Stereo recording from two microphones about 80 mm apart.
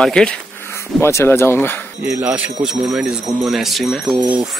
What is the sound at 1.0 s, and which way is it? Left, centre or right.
Speech, left.